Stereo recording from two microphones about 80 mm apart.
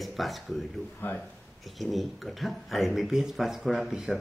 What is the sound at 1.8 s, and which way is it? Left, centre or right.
Speech, centre.